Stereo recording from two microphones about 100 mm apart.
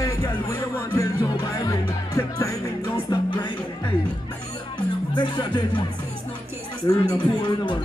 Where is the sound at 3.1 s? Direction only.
50° left (ahead or behind).